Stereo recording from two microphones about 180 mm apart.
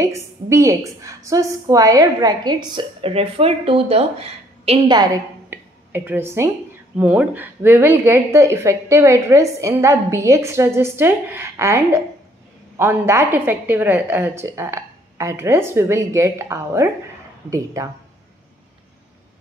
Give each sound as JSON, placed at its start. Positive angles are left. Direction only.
{"t": 0.0, "sound": "a woman's voice", "side_deg": -15}
{"t": 5.5, "sound": "a woman's voice", "side_deg": -10}